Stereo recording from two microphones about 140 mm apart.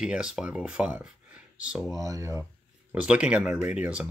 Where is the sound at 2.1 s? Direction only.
20° right (ahead or behind).